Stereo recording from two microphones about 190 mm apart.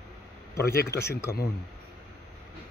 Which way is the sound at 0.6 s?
55° left (ahead or behind).